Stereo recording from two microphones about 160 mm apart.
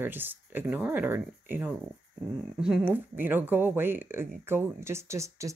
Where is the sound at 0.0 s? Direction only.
10° right (ahead or behind).